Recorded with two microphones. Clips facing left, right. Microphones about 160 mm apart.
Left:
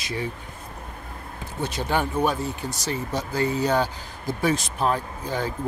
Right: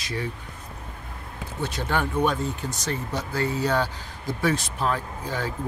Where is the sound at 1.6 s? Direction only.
15° left (ahead or behind).